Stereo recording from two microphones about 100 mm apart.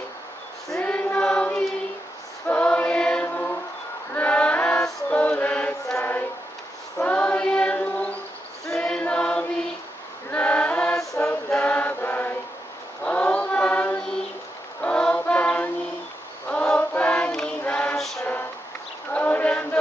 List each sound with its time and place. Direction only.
0.7 s choir: 15° left (ahead or behind)
4.1 s a sound: 15° left (ahead or behind)
4.8 s music: 10° left (ahead or behind)
5.9 s a sound: 20° left (ahead or behind)
7.0 s choir: 15° left (ahead or behind)
10.3 s chant: 15° left (ahead or behind)
11.5 s mantra: 15° left (ahead or behind)
13.0 s choir: 15° left (ahead or behind)
14.8 s music: 10° left (ahead or behind)
16.4 s choir: 10° left (ahead or behind)
17.9 s music: centre (ahead or behind)
19.1 s chant: 15° left (ahead or behind)